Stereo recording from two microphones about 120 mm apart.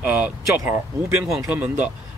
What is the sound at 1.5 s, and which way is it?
Speech, 15° right (ahead or behind).